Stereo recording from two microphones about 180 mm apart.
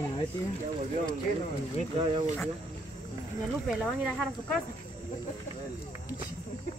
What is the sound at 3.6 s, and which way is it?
Speech, centre (ahead or behind).